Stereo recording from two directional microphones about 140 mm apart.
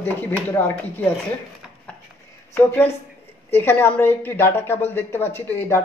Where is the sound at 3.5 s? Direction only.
15° left (ahead or behind).